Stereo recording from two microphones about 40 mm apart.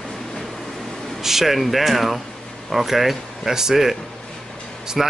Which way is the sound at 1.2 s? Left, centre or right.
Centre.